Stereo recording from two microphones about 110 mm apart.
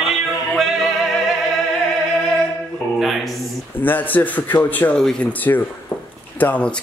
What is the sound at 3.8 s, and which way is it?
A man's voice, 15° left (ahead or behind).